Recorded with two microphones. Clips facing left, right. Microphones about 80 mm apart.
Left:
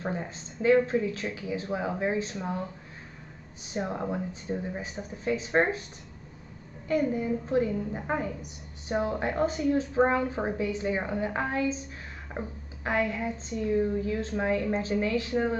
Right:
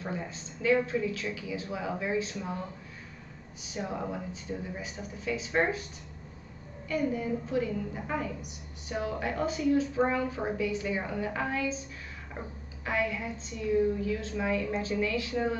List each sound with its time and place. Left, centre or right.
0.0 s a woman's voice: left
3.7 s a woman's voice: left
6.9 s a woman's voice: left